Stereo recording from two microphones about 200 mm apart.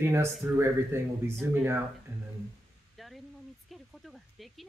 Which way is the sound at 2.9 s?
Centre (ahead or behind).